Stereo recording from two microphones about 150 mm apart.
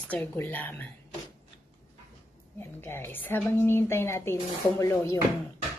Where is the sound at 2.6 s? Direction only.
15° left (ahead or behind).